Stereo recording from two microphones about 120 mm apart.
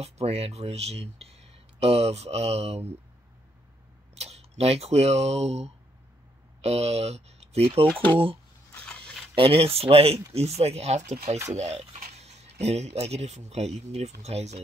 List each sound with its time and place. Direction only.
0.0 s speech: 60° right (ahead or behind)
4.1 s speech: 60° right (ahead or behind)
7.9 s speech: 15° left (ahead or behind)
9.3 s speech: 50° right (ahead or behind); by 14.6 s 65° right (ahead or behind)